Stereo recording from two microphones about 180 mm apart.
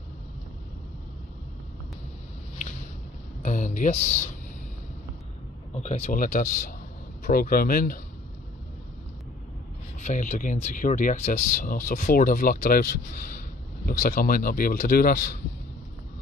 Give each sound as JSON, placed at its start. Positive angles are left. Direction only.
{"t": 3.4, "sound": "speech", "side_deg": 45}
{"t": 5.8, "sound": "speech", "side_deg": 40}
{"t": 9.9, "sound": "speech", "side_deg": 40}